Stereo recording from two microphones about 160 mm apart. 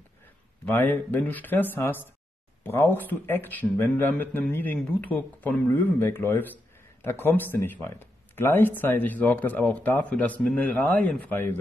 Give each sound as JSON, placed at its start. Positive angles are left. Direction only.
{"t": 0.7, "sound": "speech", "side_deg": 10}